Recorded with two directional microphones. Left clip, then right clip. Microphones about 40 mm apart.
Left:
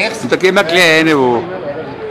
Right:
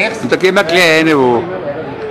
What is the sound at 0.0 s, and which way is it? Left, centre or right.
Speech, left.